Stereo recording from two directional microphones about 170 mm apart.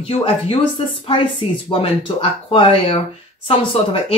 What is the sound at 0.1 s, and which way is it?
Speech, 35° left (ahead or behind).